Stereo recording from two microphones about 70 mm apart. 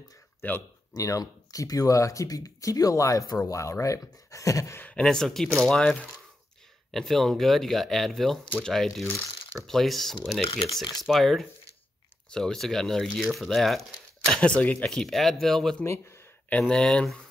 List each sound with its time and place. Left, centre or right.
0.4 s speech: left
0.9 s speech: left
4.7 s speech: left
5.0 s speech: centre
9.0 s speech: left
9.7 s speech: centre
10.7 s speech: left
11.1 s speech: centre
14.5 s speech: centre
14.9 s speech: centre
15.8 s speech: left
16.6 s speech: centre